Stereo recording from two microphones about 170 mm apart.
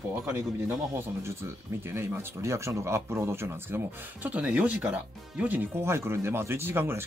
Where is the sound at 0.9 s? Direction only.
15° right (ahead or behind).